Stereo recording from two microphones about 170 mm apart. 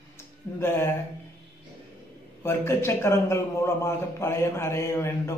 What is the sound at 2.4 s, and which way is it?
A man's voice, 15° left (ahead or behind).